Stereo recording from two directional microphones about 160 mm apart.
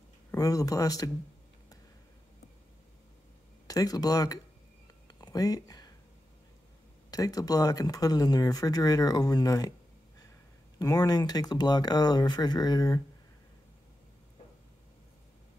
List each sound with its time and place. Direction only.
0.3 s speech: 20° left (ahead or behind)
3.6 s speech: 20° left (ahead or behind)
7.1 s speech: 20° left (ahead or behind)